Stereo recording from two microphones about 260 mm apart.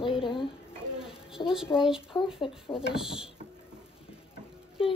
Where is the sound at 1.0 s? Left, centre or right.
Centre.